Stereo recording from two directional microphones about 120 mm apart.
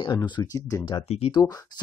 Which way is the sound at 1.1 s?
60° left (ahead or behind).